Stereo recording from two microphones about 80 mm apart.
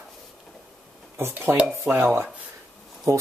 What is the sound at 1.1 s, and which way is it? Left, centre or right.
Speech, right.